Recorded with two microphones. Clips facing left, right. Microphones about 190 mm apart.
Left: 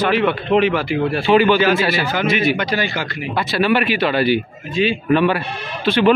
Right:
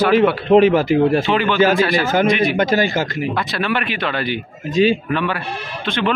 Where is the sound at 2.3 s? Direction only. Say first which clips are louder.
Right 1 dB; 5° left (ahead or behind).